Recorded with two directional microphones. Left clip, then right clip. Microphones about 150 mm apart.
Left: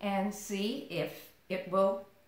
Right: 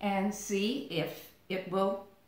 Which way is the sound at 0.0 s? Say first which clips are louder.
Right 1 dB; 20° left (ahead or behind).